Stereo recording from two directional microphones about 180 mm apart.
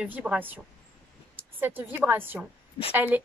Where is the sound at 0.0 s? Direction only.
5° right (ahead or behind).